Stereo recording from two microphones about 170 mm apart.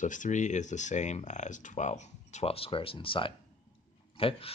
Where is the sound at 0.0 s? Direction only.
45° left (ahead or behind).